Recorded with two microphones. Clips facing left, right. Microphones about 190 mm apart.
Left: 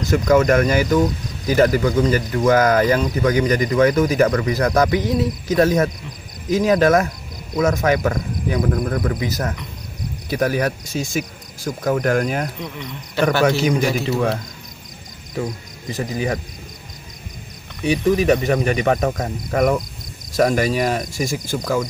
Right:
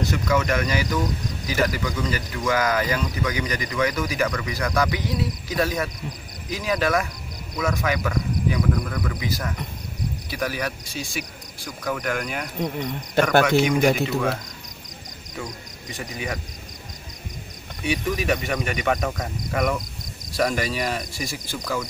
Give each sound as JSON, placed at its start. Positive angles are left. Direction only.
{"t": 0.1, "sound": "speech", "side_deg": 40}
{"t": 1.5, "sound": "speech", "side_deg": 40}
{"t": 12.5, "sound": "a man's voice", "side_deg": -45}
{"t": 13.5, "sound": "speech", "side_deg": 35}
{"t": 15.9, "sound": "speech", "side_deg": 35}
{"t": 17.8, "sound": "speech", "side_deg": 40}